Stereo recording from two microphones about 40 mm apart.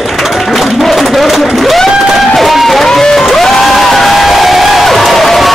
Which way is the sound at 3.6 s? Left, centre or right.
Centre.